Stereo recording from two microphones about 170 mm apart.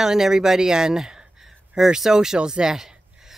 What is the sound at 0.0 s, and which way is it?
Speech, 5° right (ahead or behind).